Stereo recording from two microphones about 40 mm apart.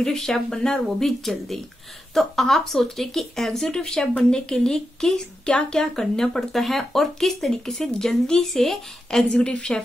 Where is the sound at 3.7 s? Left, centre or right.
Left.